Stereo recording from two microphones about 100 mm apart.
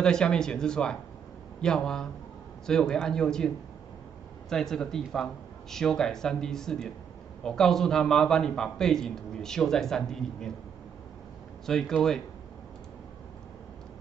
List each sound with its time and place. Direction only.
0.0 s a man's voice: 5° left (ahead or behind)
11.6 s a man's voice: 5° left (ahead or behind)